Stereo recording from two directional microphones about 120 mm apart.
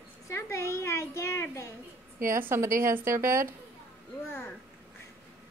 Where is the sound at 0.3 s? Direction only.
25° left (ahead or behind).